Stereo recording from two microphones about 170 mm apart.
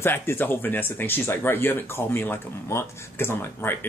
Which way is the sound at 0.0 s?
15° left (ahead or behind).